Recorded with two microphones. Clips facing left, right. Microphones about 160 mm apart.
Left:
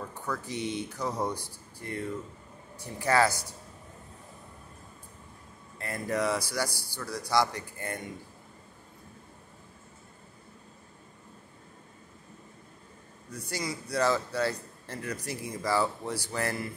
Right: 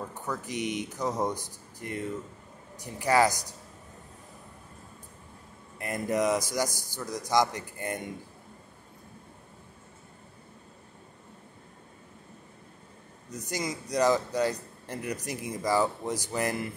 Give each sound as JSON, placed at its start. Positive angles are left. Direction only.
{"t": 0.1, "sound": "a man's voice", "side_deg": -15}
{"t": 5.8, "sound": "a man's voice", "side_deg": -15}
{"t": 13.5, "sound": "a man's voice", "side_deg": -20}